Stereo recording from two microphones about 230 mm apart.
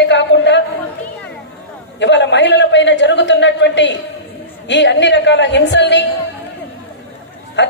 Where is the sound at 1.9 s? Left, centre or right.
Left.